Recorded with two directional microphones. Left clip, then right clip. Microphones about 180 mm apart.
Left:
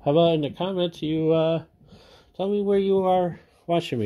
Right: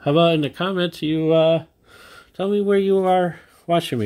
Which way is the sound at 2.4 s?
25° right (ahead or behind).